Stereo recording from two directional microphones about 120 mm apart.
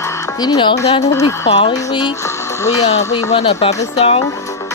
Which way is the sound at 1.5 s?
65° left (ahead or behind).